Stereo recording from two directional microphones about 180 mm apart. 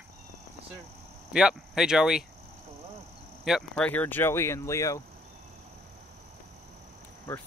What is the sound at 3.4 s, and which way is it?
Speech, centre (ahead or behind).